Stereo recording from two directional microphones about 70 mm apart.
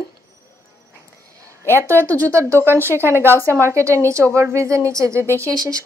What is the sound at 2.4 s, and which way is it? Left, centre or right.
Speech, right.